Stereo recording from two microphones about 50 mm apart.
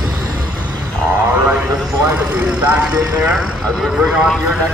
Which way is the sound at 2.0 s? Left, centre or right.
Right.